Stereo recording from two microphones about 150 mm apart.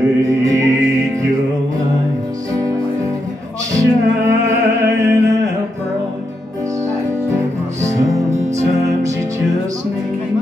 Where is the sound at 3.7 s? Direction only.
20° right (ahead or behind).